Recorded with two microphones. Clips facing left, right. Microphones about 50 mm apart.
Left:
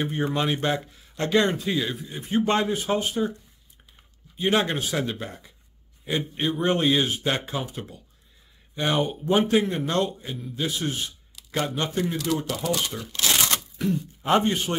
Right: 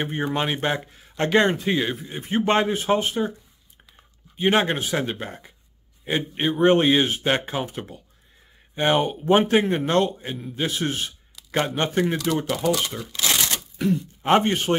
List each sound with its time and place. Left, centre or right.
0.0 s a man's voice: right
4.4 s a man's voice: right
13.7 s speech: right